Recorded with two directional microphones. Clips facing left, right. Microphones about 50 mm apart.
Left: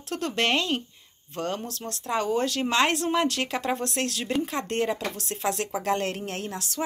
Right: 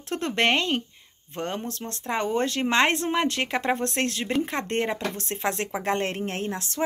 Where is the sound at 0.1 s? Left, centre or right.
Right.